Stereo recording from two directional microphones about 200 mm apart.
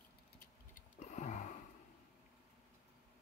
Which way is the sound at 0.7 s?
35° left (ahead or behind).